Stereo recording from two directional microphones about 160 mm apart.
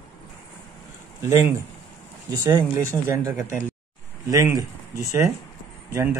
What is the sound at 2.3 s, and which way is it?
Speech, 15° right (ahead or behind).